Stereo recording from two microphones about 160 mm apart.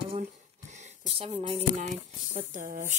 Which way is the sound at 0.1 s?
45° right (ahead or behind).